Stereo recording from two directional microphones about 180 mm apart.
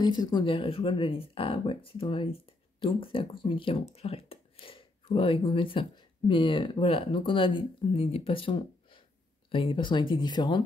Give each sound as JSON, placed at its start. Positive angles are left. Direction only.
{"t": 0.0, "sound": "speech", "side_deg": 25}